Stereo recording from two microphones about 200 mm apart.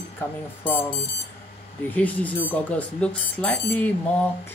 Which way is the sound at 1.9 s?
5° left (ahead or behind).